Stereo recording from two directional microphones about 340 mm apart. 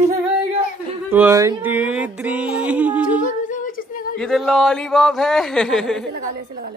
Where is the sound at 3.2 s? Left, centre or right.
Left.